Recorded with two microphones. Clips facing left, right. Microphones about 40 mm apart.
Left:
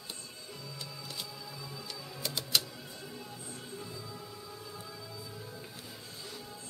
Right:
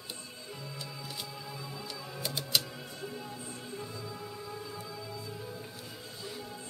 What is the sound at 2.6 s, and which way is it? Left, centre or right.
Music, right.